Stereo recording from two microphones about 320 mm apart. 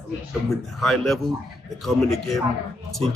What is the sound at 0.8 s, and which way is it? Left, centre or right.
Speech, centre.